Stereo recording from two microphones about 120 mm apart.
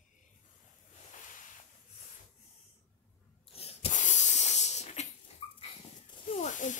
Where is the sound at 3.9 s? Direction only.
85° left; by 5.0 s 70° left (ahead or behind).